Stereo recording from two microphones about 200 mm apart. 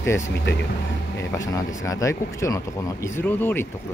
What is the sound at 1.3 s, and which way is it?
Speech, 15° left (ahead or behind).